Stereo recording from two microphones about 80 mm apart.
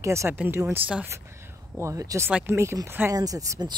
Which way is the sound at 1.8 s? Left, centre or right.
Right.